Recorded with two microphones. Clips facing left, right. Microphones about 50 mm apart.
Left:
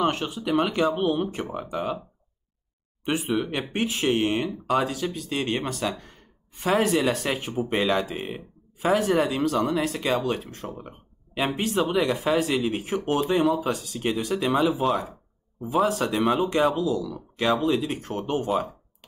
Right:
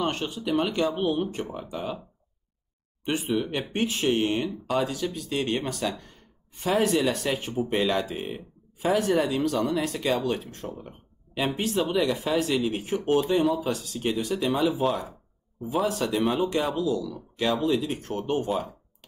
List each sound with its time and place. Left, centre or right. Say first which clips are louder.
0.0 s speech: left 3 dB; centre
3.4 s speech: even; centre
4.6 s speech: left 3 dB; centre
10.8 s speech: left 2 dB; left; by 18.7 s centre